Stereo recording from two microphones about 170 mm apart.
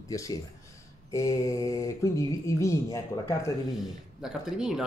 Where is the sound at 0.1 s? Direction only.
20° left (ahead or behind).